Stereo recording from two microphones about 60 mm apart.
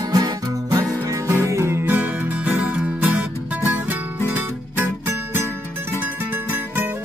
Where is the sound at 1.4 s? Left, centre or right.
Right.